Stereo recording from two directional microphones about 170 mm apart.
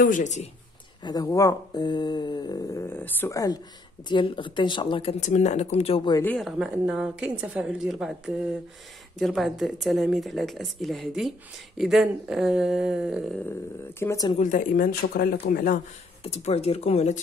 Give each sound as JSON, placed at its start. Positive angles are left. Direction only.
{"t": 0.0, "sound": "speech", "side_deg": 50}
{"t": 1.0, "sound": "speech", "side_deg": 20}
{"t": 5.2, "sound": "speech", "side_deg": 45}
{"t": 6.3, "sound": "speech", "side_deg": -5}
{"t": 9.2, "sound": "speech", "side_deg": 0}
{"t": 13.9, "sound": "speech", "side_deg": 20}
{"t": 14.4, "sound": "speech", "side_deg": 50}
{"t": 16.3, "sound": "speech", "side_deg": 40}